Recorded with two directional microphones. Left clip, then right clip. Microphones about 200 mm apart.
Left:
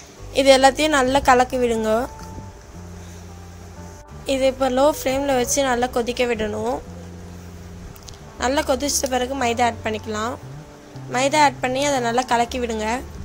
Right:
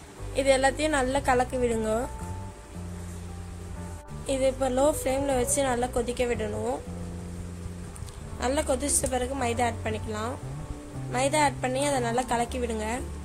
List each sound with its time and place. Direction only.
0.3 s a woman's voice: 25° left (ahead or behind)
4.3 s a woman's voice: 15° left (ahead or behind)
8.4 s a woman's voice: 10° left (ahead or behind)